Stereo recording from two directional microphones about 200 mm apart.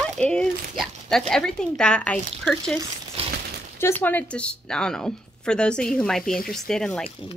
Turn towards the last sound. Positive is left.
turn(degrees=0)  # may be behind; listen again after turning